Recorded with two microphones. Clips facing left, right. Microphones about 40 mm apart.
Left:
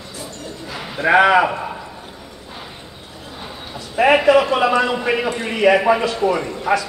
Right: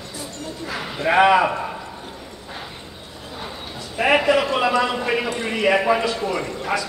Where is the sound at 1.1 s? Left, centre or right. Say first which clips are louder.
Left 2 dB; centre.